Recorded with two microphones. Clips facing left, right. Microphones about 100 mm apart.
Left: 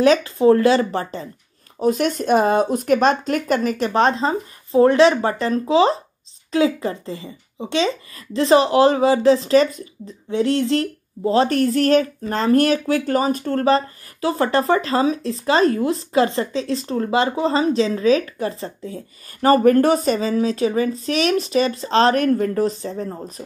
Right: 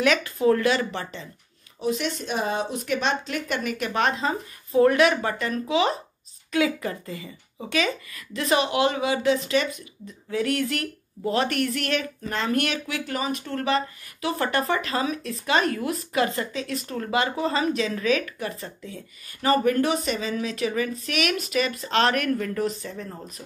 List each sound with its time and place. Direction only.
0.0 s speech: 30° left (ahead or behind)